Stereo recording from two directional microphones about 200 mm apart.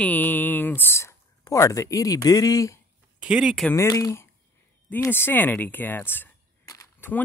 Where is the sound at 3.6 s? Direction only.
15° left (ahead or behind).